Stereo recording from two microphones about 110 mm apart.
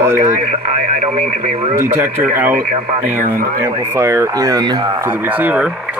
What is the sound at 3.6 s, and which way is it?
Speech, 25° right (ahead or behind).